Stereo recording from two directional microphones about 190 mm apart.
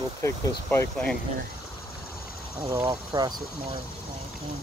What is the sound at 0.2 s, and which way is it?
Speech, 15° left (ahead or behind).